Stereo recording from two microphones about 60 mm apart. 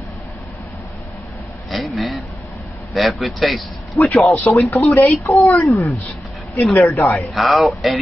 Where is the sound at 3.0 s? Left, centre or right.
Centre.